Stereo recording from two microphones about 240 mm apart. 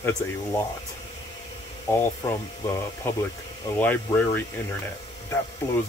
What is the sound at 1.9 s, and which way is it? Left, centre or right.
Speech, centre.